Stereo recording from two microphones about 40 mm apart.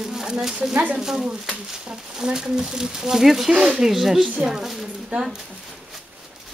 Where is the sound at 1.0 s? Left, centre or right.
Centre.